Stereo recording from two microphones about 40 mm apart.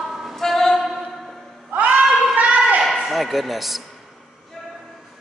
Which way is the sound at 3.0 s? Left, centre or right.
Centre.